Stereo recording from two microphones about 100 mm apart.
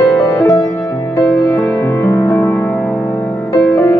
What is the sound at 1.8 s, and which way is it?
Music, 35° left (ahead or behind).